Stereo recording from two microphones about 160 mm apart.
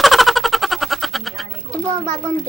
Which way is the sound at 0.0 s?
Centre (ahead or behind).